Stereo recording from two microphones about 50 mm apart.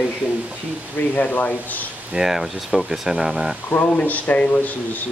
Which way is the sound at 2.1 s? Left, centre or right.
Centre.